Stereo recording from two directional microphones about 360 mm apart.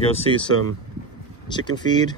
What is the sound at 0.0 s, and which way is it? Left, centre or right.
Speech, centre.